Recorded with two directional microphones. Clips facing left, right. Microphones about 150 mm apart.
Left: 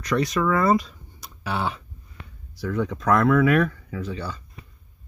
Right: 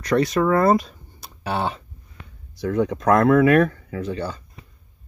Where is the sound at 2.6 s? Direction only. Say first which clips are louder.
Right 4 dB; 50° right (ahead or behind).